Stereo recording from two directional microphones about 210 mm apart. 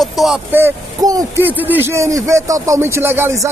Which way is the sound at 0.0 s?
Centre (ahead or behind).